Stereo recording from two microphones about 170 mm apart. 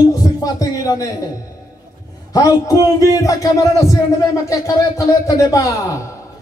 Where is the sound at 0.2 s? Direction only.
20° left (ahead or behind).